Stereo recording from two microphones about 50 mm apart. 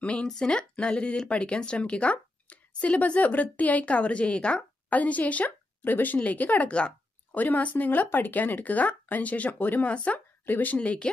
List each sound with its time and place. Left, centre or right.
0.0 s a woman's voice: left